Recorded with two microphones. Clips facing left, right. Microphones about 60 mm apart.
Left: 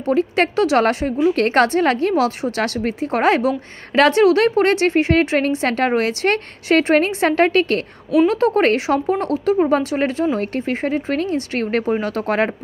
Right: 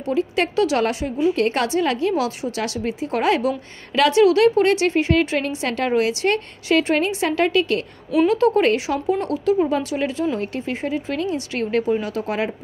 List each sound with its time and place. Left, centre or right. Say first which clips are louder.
0.0 s a woman's voice: left 4 dB; left